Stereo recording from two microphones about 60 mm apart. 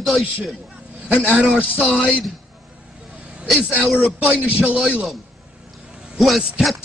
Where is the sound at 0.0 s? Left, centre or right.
Centre.